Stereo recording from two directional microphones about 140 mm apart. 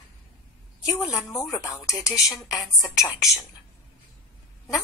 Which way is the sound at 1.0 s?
25° left (ahead or behind).